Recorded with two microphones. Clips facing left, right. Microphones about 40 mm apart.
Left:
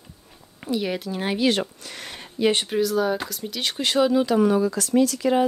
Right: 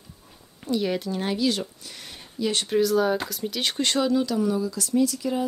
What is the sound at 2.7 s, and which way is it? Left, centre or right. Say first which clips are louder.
Speech: right 1 dB; centre.